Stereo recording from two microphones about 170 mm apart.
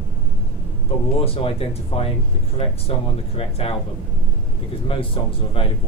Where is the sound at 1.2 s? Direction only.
35° left (ahead or behind).